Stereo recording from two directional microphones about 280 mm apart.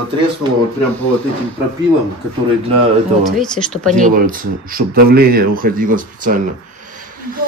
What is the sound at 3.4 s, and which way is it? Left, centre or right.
Speech, centre.